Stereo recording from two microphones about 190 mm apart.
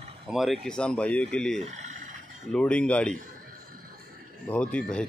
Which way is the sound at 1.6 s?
40° right (ahead or behind).